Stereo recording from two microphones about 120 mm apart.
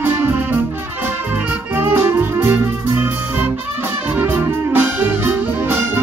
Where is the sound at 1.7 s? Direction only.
20° right (ahead or behind).